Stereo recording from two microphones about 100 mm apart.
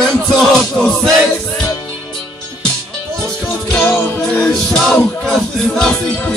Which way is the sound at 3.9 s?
20° left (ahead or behind).